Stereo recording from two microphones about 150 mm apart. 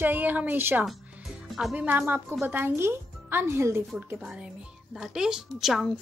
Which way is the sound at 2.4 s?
15° right (ahead or behind).